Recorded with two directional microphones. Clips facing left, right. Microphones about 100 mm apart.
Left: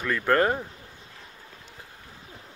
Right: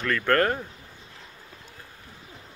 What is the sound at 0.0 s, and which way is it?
Speech, 10° left (ahead or behind).